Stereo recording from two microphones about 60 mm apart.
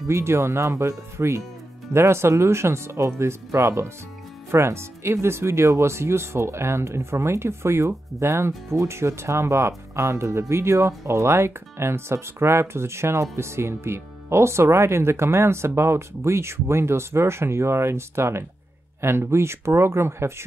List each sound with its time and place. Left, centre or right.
0.1 s speech: right